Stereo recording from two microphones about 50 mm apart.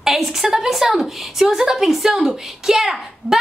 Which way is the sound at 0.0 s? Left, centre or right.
Centre.